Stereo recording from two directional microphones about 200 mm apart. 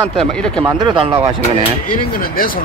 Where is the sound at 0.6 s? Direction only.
25° right (ahead or behind).